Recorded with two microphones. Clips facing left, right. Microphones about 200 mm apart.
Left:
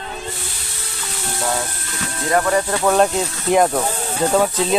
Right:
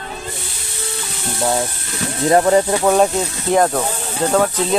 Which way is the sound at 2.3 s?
25° right (ahead or behind).